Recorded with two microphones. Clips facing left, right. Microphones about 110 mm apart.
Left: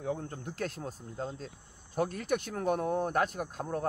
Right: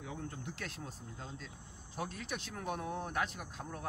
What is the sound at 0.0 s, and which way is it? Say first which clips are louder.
Speech: left 8 dB; 40° left (ahead or behind).